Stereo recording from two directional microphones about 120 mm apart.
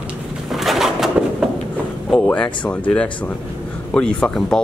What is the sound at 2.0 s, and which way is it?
Speech, 10° left (ahead or behind).